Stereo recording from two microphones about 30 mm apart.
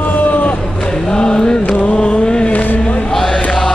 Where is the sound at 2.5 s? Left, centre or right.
Left.